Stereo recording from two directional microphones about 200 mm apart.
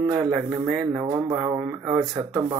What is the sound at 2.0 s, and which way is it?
Speech, 20° right (ahead or behind).